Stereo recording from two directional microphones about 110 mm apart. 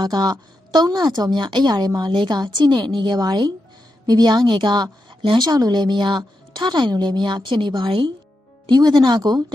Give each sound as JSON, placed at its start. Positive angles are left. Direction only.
{"t": 0.0, "sound": "a woman's voice", "side_deg": -40}